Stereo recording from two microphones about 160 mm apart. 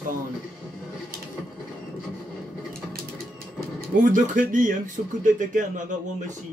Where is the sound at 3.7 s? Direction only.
55° right (ahead or behind).